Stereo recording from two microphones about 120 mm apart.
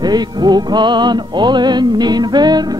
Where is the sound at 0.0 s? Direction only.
35° right (ahead or behind).